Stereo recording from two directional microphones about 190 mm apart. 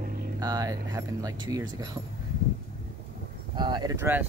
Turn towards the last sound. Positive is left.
turn(degrees=-10)  # may be behind; listen again after turning